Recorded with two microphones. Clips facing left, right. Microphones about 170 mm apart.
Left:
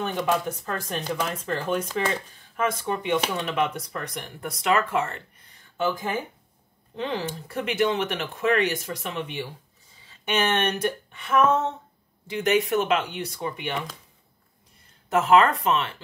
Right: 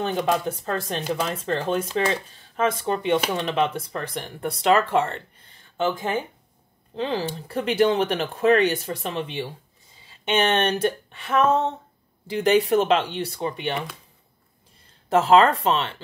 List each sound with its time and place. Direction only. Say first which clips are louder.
0.0 s speech: right 2 dB; 30° right (ahead or behind)
15.0 s speech: right 2 dB; 30° right (ahead or behind)